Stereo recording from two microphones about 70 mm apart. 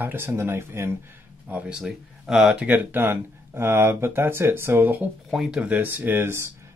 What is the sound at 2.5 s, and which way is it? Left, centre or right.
Speech, right.